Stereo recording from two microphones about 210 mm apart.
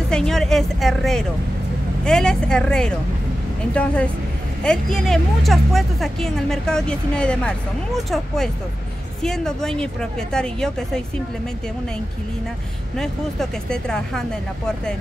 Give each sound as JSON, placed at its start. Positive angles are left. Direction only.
{"t": 0.1, "sound": "a sound", "side_deg": 0}
{"t": 2.0, "sound": "speech", "side_deg": 5}
{"t": 12.9, "sound": "speech", "side_deg": 5}